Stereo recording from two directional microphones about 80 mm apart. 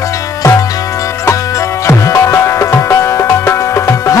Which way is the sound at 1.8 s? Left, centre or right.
Left.